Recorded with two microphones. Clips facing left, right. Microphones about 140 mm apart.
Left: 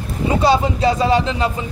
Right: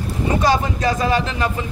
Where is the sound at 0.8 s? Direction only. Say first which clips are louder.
Left 3 dB; 30° left (ahead or behind).